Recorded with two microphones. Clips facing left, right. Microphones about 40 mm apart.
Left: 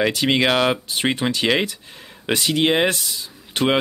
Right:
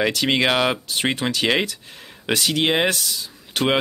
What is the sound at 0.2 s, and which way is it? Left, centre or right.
Speech, centre.